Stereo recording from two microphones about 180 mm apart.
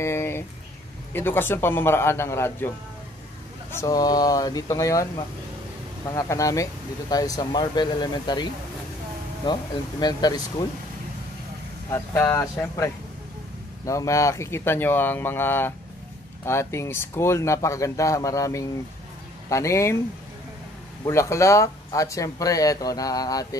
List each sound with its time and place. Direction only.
0.0 s a sound: 15° left (ahead or behind)
1.1 s speech: 10° left (ahead or behind)
3.7 s speech: 20° left (ahead or behind)
6.1 s speech: 20° left (ahead or behind)
9.5 s speech: 25° left (ahead or behind)
11.9 s speech: 15° left (ahead or behind)
21.0 s speech: 15° left (ahead or behind)